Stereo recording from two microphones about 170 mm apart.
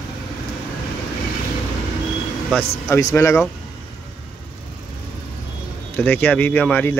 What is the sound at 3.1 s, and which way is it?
Speech, 15° left (ahead or behind).